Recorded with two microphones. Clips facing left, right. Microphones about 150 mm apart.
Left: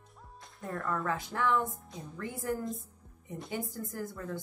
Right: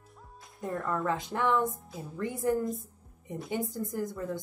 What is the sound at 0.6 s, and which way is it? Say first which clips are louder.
Speech: right 3 dB; centre (ahead or behind).